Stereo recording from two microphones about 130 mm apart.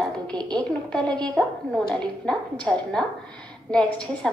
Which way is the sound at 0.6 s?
5° left (ahead or behind).